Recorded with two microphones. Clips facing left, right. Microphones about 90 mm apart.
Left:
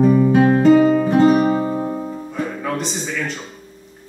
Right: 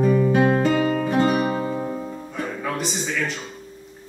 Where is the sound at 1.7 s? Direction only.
20° left (ahead or behind).